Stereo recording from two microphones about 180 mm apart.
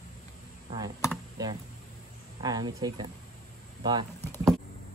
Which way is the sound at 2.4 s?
20° right (ahead or behind).